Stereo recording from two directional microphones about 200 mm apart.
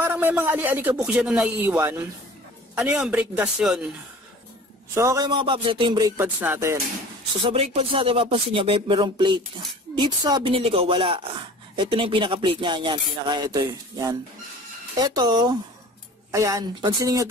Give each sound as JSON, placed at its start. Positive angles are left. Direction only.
{"t": 0.0, "sound": "a man's voice", "side_deg": -10}
{"t": 4.9, "sound": "speech", "side_deg": -15}
{"t": 7.4, "sound": "speech", "side_deg": -30}